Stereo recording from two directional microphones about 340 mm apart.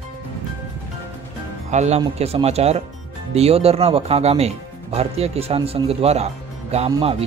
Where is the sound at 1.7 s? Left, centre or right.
Centre.